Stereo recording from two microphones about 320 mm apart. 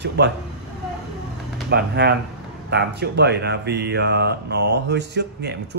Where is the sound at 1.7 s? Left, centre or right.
Right.